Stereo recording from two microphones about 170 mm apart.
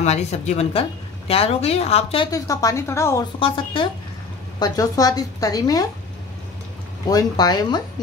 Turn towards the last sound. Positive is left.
turn(degrees=25)  # may be behind; listen again after turning